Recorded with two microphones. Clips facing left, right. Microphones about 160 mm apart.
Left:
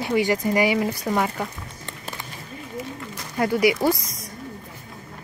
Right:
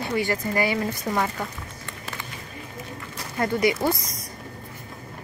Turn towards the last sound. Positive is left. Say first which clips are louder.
# left 3 dB
turn(degrees=10)  # may be behind; listen again after turning